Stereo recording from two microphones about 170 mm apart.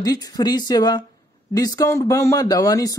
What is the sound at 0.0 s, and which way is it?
Speech, 20° left (ahead or behind).